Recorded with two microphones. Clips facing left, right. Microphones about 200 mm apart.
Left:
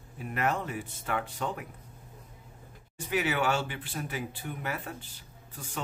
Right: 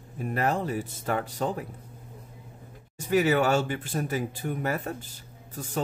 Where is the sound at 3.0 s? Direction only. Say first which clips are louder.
Right 7 dB; 40° right (ahead or behind).